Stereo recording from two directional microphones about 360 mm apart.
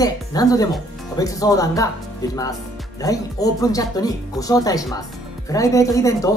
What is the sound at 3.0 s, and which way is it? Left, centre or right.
Speech, centre.